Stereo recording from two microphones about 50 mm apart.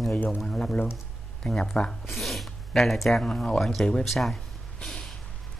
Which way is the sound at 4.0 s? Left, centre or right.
Centre.